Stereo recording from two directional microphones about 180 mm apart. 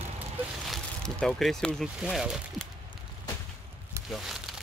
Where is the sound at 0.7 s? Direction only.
Centre (ahead or behind).